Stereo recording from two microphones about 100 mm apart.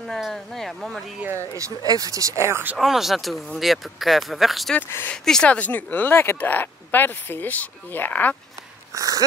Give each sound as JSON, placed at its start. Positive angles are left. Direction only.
{"t": 0.1, "sound": "speech", "side_deg": 5}
{"t": 1.6, "sound": "speech", "side_deg": -40}
{"t": 2.8, "sound": "speech", "side_deg": 0}
{"t": 4.7, "sound": "speech", "side_deg": 15}
{"t": 8.9, "sound": "speech", "side_deg": -35}